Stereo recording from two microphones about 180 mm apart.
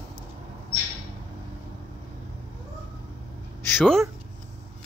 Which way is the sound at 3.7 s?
5° left (ahead or behind).